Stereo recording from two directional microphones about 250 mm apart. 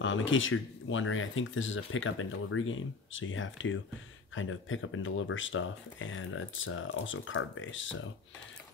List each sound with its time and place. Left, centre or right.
0.0 s speech: left